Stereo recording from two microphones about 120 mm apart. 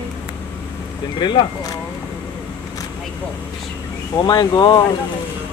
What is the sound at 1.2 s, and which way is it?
Speech, 35° left (ahead or behind).